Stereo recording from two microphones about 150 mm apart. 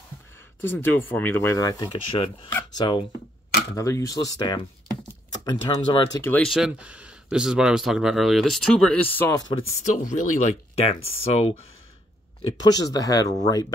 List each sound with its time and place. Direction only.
0.6 s speech: 15° left (ahead or behind); by 6.0 s 30° left (ahead or behind)
6.2 s speech: 10° left (ahead or behind)
6.5 s speech: 5° right (ahead or behind); by 9.4 s 10° left (ahead or behind)
9.4 s speech: 30° left (ahead or behind)
9.8 s speech: 55° left (ahead or behind)
12.4 s speech: 30° left (ahead or behind)